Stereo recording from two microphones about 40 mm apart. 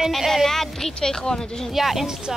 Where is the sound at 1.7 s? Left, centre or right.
Centre.